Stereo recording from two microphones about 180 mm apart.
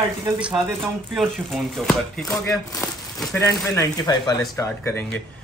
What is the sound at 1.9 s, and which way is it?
Speech, 5° left (ahead or behind).